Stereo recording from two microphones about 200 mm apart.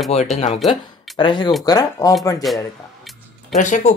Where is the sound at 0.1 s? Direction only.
35° left (ahead or behind).